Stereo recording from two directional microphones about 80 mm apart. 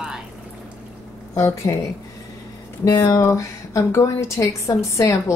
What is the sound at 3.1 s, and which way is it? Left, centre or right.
A woman's voice, left.